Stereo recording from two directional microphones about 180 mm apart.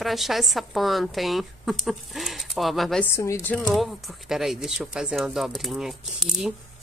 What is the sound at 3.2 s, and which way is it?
Speech, 15° left (ahead or behind).